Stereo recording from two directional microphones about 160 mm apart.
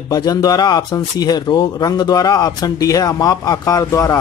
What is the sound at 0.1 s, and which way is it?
Speech, 25° left (ahead or behind).